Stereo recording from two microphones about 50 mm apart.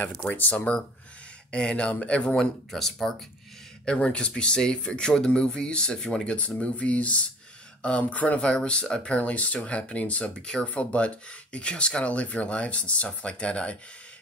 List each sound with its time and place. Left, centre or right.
0.3 s speech: left
1.5 s speech: left
2.3 s speech: centre
3.8 s speech: centre
6.3 s speech: left
8.5 s speech: centre
12.0 s speech: left